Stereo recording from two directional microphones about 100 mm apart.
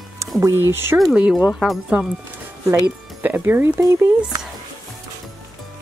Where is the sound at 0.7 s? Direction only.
25° right (ahead or behind).